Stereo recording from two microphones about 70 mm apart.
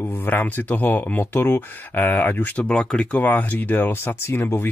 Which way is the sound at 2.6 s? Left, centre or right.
Centre.